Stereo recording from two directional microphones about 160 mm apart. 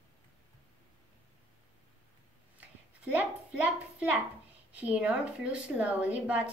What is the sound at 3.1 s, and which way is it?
A child's voice, 10° right (ahead or behind).